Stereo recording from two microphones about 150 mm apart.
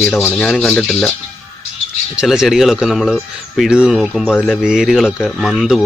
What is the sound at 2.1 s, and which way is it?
Speech, 5° right (ahead or behind).